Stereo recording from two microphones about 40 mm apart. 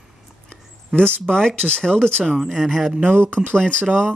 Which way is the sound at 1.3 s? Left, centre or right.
Centre.